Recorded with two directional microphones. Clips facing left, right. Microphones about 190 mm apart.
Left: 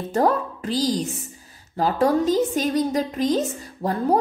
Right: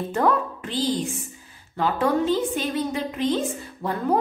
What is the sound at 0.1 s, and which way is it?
A woman's voice, 40° left (ahead or behind).